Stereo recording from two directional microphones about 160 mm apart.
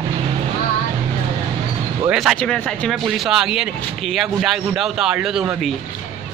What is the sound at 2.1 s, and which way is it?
Speech, centre (ahead or behind).